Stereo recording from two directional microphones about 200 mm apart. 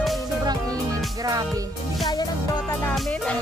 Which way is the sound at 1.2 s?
15° right (ahead or behind).